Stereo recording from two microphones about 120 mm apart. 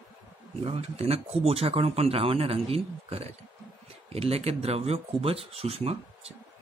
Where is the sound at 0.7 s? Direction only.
55° right (ahead or behind).